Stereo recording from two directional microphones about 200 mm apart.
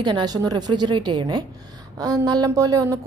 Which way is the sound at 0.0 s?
20° right (ahead or behind).